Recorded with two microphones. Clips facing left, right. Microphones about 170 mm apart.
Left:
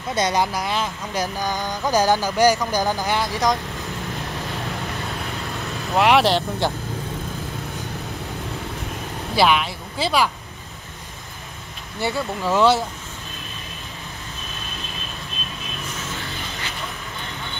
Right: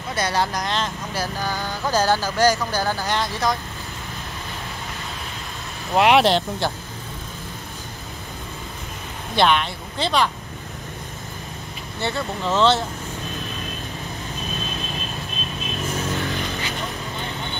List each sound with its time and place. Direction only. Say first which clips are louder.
0.1 s speech: left 2 dB; 20° left (ahead or behind)
5.9 s speech: right 1 dB; 15° right (ahead or behind)
9.3 s speech: even; 5° left (ahead or behind)
12.0 s speech: left 2 dB; 10° left (ahead or behind)